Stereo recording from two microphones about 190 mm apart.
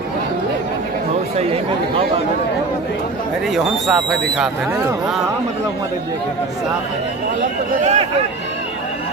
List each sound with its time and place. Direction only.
3.5 s speech: centre (ahead or behind)
7.8 s speech: 35° right (ahead or behind)